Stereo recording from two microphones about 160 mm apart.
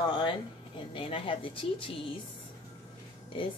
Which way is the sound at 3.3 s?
35° left (ahead or behind).